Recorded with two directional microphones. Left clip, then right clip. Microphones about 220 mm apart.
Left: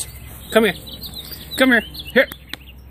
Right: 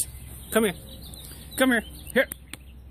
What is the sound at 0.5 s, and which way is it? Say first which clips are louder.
Speech: left 8 dB; 5° right (ahead or behind).